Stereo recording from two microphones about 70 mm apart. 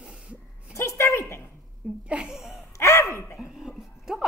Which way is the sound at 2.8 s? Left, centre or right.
Left.